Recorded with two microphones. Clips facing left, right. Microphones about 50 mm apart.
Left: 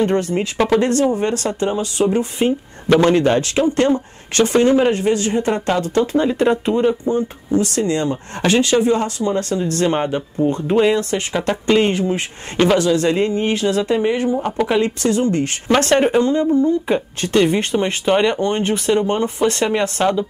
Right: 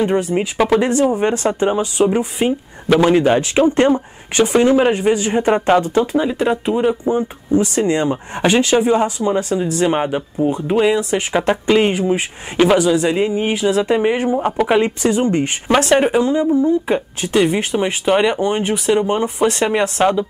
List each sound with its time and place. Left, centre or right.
0.0 s speech: centre
6.1 s speech: centre
15.7 s speech: centre